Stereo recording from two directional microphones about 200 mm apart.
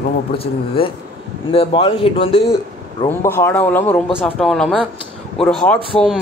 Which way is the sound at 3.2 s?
10° left (ahead or behind).